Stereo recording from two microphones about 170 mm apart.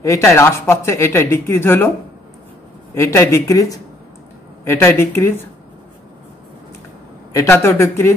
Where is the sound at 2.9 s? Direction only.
15° left (ahead or behind).